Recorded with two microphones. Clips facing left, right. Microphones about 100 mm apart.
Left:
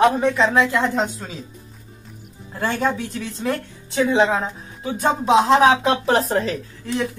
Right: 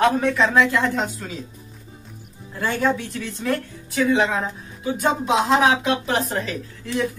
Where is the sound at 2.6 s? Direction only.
30° left (ahead or behind).